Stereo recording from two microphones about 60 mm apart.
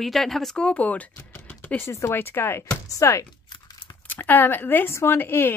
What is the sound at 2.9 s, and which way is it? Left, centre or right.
Speech, left.